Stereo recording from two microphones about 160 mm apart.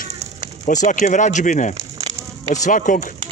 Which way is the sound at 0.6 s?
50° left (ahead or behind).